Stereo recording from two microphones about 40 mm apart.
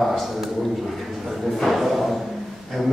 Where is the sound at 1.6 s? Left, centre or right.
Centre.